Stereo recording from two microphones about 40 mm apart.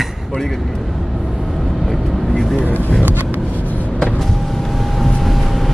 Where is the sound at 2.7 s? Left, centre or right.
Left.